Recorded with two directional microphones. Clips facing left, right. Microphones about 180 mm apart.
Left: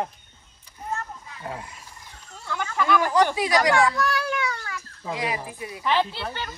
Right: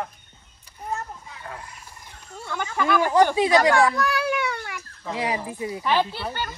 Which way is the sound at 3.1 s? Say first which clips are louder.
Right 6 dB; 25° right (ahead or behind).